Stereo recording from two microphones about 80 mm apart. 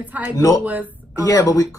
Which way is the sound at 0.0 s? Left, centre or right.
Centre.